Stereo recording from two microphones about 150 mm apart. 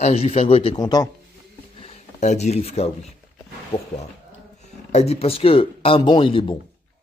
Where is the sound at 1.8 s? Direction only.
45° left (ahead or behind).